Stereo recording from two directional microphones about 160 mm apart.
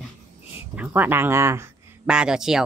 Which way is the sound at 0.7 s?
10° right (ahead or behind).